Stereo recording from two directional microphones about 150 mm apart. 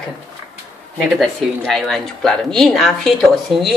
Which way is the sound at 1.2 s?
Centre (ahead or behind).